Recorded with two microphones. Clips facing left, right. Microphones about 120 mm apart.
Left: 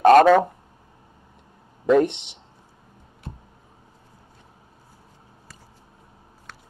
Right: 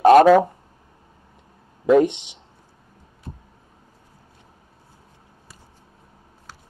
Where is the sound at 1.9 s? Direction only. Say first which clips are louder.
Right 2 dB; 5° right (ahead or behind).